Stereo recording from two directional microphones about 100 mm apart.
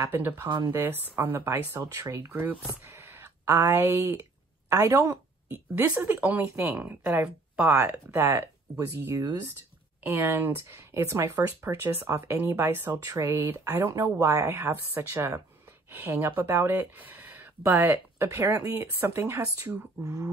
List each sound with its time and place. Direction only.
0.1 s speech: 20° right (ahead or behind)
0.5 s speech: 45° right (ahead or behind)
1.1 s speech: 20° right (ahead or behind)
1.8 s speech: 30° right (ahead or behind)
2.3 s speech: 20° right (ahead or behind)
8.1 s speech: 25° right (ahead or behind)
13.0 s speech: 35° right (ahead or behind)
14.1 s speech: 30° right (ahead or behind)